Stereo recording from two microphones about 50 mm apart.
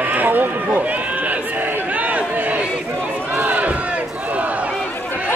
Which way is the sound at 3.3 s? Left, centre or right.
Right.